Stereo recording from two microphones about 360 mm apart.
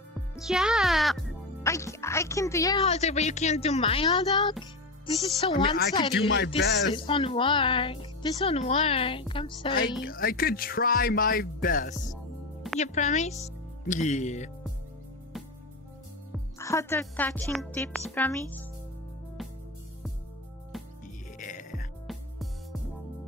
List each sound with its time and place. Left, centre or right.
0.4 s speech: centre
6.9 s speech: centre
10.0 s speech: left
16.3 s a woman's voice: centre
21.4 s music: left
22.0 s music: centre